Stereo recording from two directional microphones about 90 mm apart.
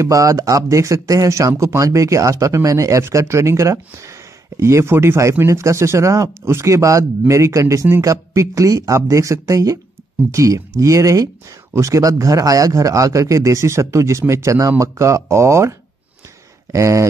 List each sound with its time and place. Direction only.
0.0 s speech: 35° right (ahead or behind)
16.7 s speech: 35° right (ahead or behind)